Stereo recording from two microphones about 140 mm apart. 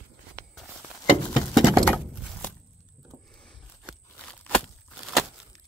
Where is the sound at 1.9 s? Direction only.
Centre (ahead or behind).